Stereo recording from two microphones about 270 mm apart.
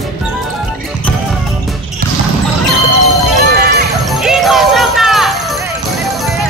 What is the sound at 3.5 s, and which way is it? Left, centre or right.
Music, right.